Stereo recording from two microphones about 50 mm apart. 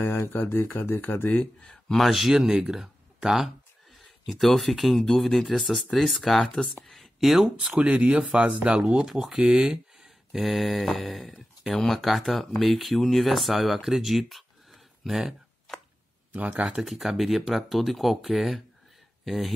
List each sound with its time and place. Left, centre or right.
0.0 s speech: left
0.3 s speech: left
1.3 s speech: left
1.7 s speech: centre
4.3 s speech: centre
6.9 s a sound: centre
7.5 s speech: centre
16.3 s speech: right
16.8 s speech: centre